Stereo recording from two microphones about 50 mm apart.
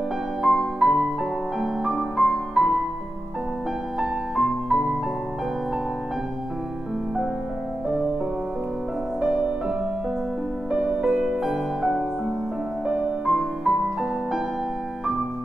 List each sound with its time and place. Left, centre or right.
0.4 s music: centre
4.0 s music: centre
9.2 s music: centre
11.4 s music: centre
13.2 s music: centre